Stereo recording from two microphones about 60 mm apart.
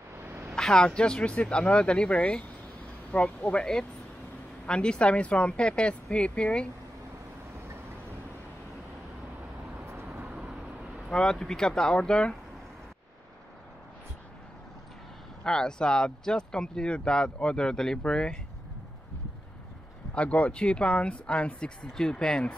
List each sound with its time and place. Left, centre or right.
0.6 s speech: centre
4.6 s speech: centre
10.0 s vehicle: right
11.1 s speech: centre
15.4 s speech: centre
20.2 s speech: left